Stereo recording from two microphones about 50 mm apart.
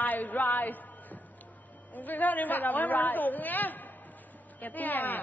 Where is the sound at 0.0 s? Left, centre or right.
Left.